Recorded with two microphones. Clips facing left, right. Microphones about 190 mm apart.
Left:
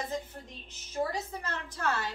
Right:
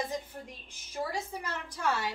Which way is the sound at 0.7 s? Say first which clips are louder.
Left 4 dB; 10° right (ahead or behind).